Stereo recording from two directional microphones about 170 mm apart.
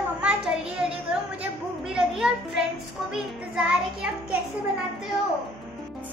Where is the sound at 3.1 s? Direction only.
5° right (ahead or behind).